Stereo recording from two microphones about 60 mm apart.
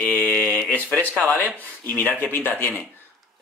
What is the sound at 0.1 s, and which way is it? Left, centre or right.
Mantra, left.